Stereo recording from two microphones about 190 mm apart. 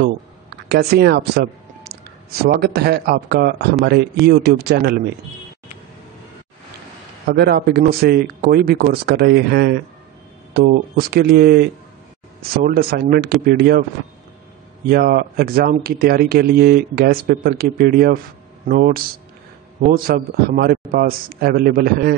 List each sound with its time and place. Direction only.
0.7 s speech: 55° right (ahead or behind)
7.2 s speech: 55° right (ahead or behind)
12.6 s speech: 50° right (ahead or behind)
14.9 s speech: 55° right (ahead or behind)